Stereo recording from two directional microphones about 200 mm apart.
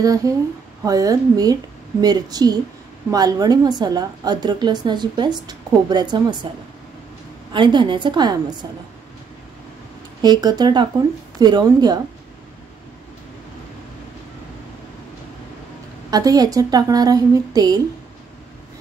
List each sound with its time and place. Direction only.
0.0 s a woman's voice: 15° right (ahead or behind)
10.2 s a woman's voice: 20° right (ahead or behind)
16.1 s a woman's voice: 20° right (ahead or behind)